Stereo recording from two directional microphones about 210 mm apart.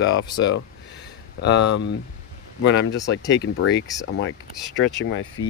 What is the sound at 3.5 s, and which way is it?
Speech, 75° left (ahead or behind).